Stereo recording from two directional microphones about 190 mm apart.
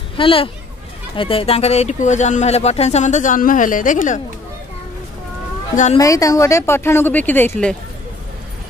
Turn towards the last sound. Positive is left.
turn(degrees=5)  # may be behind; listen again after turning